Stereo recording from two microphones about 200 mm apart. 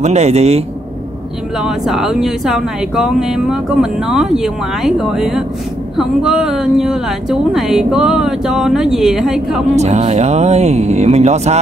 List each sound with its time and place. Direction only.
0.0 s speech: 35° right (ahead or behind)
1.6 s speech: centre (ahead or behind)
9.8 s speech: 35° right (ahead or behind)